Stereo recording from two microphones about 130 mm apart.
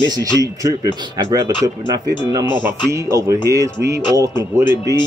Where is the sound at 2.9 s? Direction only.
25° right (ahead or behind).